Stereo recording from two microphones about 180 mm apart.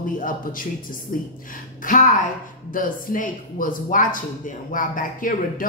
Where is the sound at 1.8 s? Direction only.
45° left (ahead or behind).